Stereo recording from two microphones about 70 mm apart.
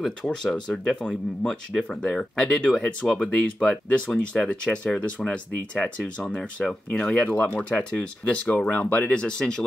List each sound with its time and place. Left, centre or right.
0.0 s speech: centre